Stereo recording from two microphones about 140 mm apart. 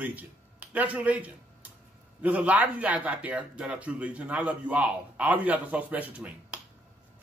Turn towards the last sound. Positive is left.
turn(degrees=-10)  # may be behind; listen again after turning